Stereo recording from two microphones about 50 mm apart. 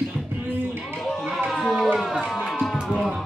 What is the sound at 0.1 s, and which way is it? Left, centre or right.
Music, right.